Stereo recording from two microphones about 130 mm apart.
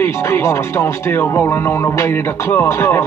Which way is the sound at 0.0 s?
20° left (ahead or behind).